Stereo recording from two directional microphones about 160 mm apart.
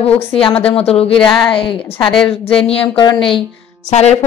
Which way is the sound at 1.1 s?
5° left (ahead or behind).